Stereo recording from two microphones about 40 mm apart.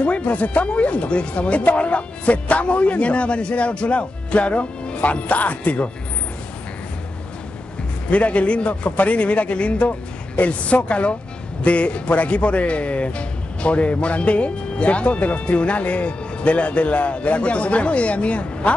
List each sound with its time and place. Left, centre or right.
0.0 s speech: left
8.1 s speech: left